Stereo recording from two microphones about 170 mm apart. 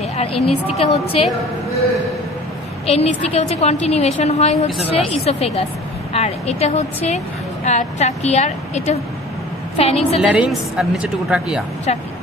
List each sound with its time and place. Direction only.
0.2 s a woman's voice: 35° left (ahead or behind)
2.9 s a woman's voice: 35° left (ahead or behind)
10.3 s a woman's voice: 5° right (ahead or behind)